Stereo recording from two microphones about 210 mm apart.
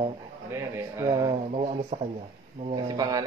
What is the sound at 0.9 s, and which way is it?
Speech, 15° right (ahead or behind).